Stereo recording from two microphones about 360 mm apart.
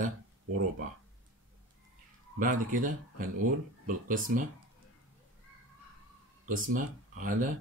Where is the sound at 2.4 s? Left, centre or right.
Right.